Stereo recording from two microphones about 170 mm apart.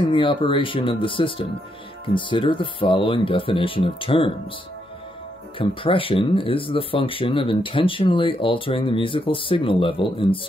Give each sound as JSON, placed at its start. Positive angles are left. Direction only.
{"t": 0.1, "sound": "speech", "side_deg": 30}
{"t": 5.6, "sound": "speech", "side_deg": 30}